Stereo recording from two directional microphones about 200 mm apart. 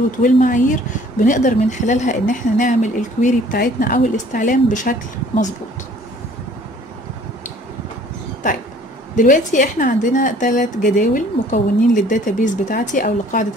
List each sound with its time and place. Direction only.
0.2 s a woman's voice: 40° left (ahead or behind)
9.1 s a woman's voice: 40° left (ahead or behind)